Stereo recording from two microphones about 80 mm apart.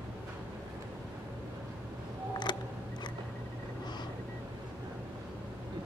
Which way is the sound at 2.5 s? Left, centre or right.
Left.